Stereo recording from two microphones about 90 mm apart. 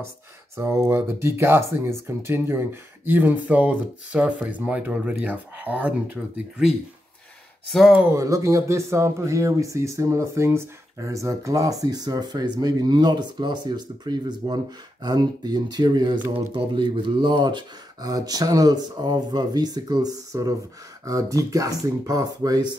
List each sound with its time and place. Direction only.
0.6 s speech: 25° right (ahead or behind)
8.1 s speech: 35° right (ahead or behind); by 16.2 s 50° right (ahead or behind)
16.5 s speech: 65° right (ahead or behind)
18.1 s speech: 45° right (ahead or behind)